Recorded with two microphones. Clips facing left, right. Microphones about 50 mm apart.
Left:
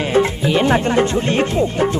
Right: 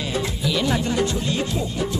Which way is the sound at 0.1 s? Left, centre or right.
Left.